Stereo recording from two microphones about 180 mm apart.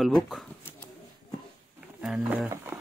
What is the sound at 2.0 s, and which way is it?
Roaring cats, 5° right (ahead or behind).